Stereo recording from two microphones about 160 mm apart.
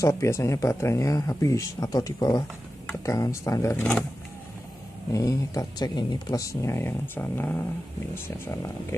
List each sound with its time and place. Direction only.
0.0 s speech: 15° left (ahead or behind)
5.1 s speech: 20° left (ahead or behind)